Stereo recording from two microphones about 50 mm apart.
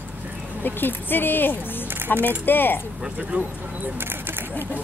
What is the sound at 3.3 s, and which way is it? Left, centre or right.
Speech, right.